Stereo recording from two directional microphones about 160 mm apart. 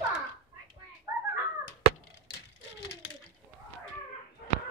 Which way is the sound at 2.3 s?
90° left.